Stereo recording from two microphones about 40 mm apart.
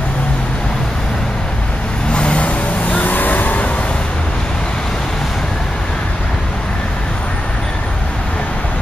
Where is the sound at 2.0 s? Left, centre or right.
Left.